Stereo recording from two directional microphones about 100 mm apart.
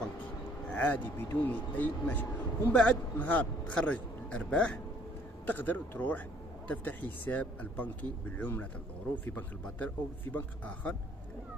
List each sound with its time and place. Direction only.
0.7 s speech: 15° left (ahead or behind)